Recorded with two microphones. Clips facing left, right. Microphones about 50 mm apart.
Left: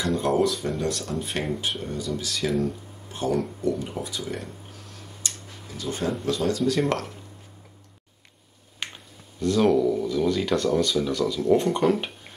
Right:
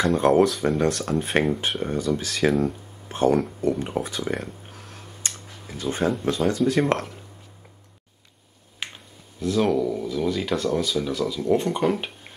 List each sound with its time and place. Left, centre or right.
0.0 s speech: right
2.6 s a sound: right
6.2 s speech: right
8.8 s finger snapping: centre
9.4 s speech: centre